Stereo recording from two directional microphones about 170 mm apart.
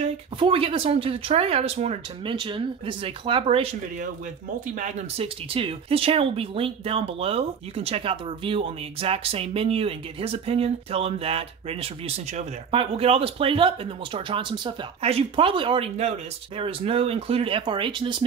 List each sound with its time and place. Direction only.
0.4 s speech: 30° right (ahead or behind)
4.7 s speech: 40° right (ahead or behind)